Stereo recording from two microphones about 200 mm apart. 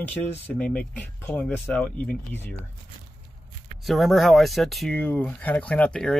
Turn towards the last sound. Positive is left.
turn(degrees=5)  # may be behind; listen again after turning